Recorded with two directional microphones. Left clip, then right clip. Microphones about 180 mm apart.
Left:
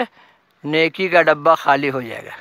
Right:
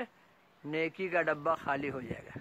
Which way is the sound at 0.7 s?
35° left (ahead or behind).